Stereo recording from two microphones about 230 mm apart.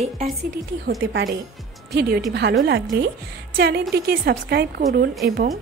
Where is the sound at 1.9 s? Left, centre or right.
Right.